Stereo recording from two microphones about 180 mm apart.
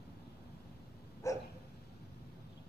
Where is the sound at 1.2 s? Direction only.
15° left (ahead or behind).